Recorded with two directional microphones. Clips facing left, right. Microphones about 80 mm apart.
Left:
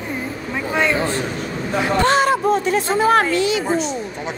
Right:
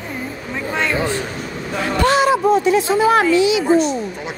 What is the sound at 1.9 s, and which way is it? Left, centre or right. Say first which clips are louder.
Music: right 2 dB; left.